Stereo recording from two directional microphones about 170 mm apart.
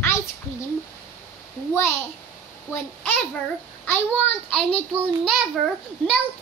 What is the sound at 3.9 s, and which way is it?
Speech, 10° left (ahead or behind).